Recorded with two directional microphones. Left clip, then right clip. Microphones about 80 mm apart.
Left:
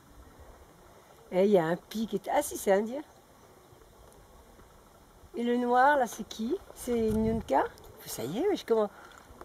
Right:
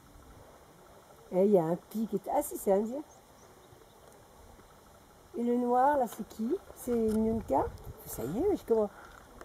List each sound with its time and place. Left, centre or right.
1.3 s speech: right
5.3 s speech: right
8.7 s speech: centre